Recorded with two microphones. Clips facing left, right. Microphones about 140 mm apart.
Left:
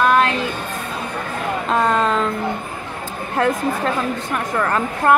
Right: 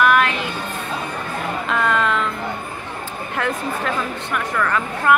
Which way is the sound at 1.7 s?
35° left (ahead or behind).